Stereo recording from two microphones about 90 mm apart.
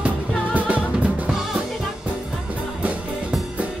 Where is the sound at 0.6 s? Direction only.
15° right (ahead or behind).